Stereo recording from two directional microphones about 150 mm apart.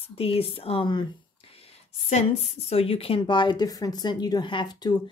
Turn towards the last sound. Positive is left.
turn(degrees=30)  # may be behind; listen again after turning